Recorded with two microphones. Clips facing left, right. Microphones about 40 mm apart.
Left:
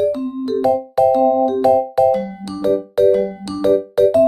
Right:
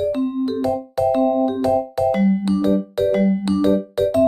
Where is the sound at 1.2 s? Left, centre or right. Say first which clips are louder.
Left 3 dB; right.